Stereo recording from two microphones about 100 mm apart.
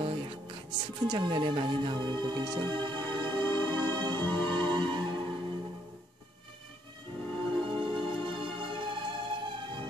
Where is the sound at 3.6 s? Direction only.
50° right (ahead or behind).